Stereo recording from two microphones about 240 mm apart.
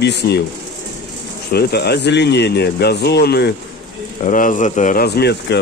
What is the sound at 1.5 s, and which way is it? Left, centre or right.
Speech, left.